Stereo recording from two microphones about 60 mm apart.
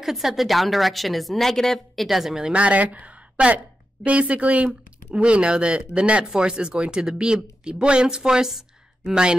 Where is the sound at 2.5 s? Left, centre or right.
Right.